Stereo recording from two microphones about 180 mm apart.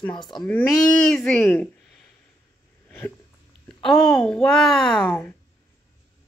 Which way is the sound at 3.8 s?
Centre (ahead or behind).